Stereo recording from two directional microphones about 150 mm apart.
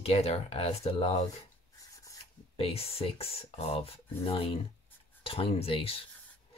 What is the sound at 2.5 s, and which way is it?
Speech, 40° left (ahead or behind).